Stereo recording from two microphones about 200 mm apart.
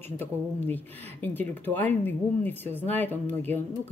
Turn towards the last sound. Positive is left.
turn(degrees=10)  # may be behind; listen again after turning